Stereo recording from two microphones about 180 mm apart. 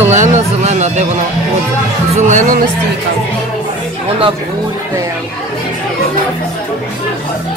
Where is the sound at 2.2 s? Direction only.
45° right (ahead or behind).